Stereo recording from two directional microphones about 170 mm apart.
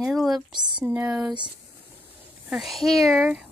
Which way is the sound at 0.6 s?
25° right (ahead or behind).